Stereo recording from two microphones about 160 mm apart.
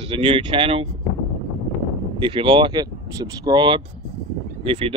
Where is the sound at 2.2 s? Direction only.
35° right (ahead or behind).